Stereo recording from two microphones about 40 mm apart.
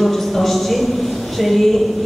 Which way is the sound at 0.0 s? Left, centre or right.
Centre.